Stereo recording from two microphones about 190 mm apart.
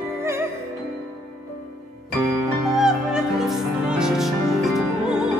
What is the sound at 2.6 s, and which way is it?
Music, centre (ahead or behind).